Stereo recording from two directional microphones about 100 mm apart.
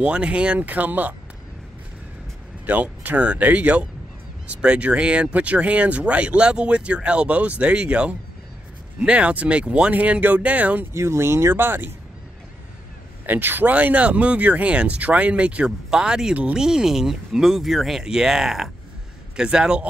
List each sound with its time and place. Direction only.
0.0 s speech: 10° right (ahead or behind)
2.6 s speech: 15° right (ahead or behind)
10.9 s speech: 25° right (ahead or behind)
13.3 s speech: 20° right (ahead or behind)